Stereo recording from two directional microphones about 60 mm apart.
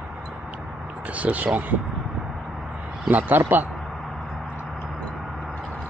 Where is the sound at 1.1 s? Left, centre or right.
Right.